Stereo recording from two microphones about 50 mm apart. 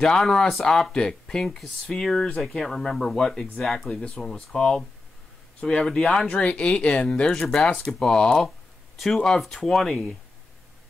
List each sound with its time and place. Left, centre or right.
0.0 s speech: centre
3.9 s speech: left
4.2 s speech: centre
4.6 s speech: centre
6.2 s speech: left
7.2 s speech: centre
8.4 s speech: centre